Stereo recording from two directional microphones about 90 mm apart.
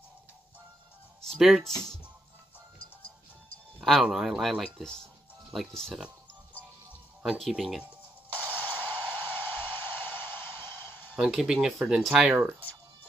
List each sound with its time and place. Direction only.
1.2 s speech: centre (ahead or behind)
3.8 s speech: centre (ahead or behind)
7.2 s speech: centre (ahead or behind)
8.3 s music: 20° left (ahead or behind)
8.8 s a sound: 20° left (ahead or behind)
11.1 s speech: 5° right (ahead or behind)
12.4 s speech: 25° right (ahead or behind)